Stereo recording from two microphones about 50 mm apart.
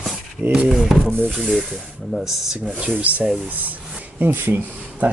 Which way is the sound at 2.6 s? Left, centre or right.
Right.